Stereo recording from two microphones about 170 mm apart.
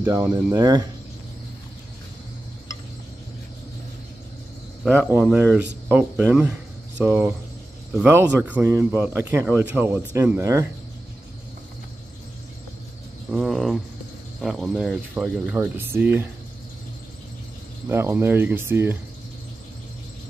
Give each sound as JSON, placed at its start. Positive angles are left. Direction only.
{"t": 0.0, "sound": "a man's voice", "side_deg": -15}
{"t": 4.9, "sound": "a man's voice", "side_deg": -5}
{"t": 13.3, "sound": "speech", "side_deg": 0}
{"t": 17.8, "sound": "a man's voice", "side_deg": -15}